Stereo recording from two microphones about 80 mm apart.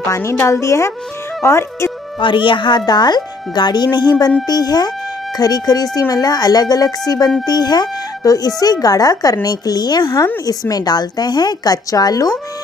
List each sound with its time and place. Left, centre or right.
0.1 s a woman's voice: left
2.1 s speech: left
2.9 s speech: left